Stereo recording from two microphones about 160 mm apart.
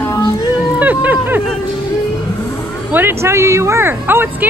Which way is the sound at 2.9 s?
15° right (ahead or behind).